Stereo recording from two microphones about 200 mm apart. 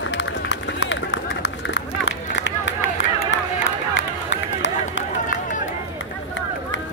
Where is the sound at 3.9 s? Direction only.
65° left (ahead or behind).